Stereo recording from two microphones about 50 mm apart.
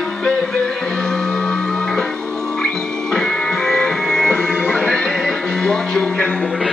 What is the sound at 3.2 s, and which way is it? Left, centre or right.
Music, centre.